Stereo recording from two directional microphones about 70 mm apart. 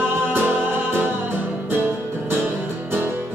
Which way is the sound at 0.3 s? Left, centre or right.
Right.